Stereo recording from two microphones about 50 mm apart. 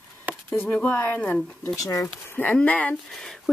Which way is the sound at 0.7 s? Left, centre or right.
Left.